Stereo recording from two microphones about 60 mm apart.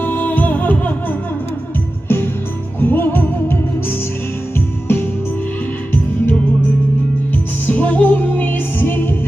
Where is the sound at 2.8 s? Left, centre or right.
Left.